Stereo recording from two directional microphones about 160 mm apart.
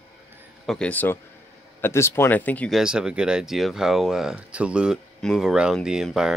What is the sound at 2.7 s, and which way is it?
Speech, 5° right (ahead or behind).